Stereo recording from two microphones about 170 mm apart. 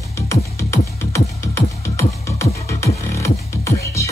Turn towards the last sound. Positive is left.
turn(degrees=15)  # may be behind; listen again after turning